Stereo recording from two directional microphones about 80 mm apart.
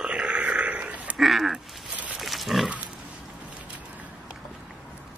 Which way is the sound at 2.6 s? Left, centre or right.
Centre.